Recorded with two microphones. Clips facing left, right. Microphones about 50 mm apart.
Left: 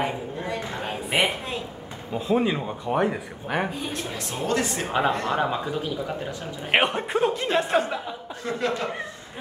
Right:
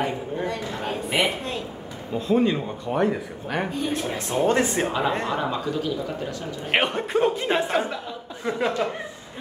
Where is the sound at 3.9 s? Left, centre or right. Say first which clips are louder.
Right 6 dB; right.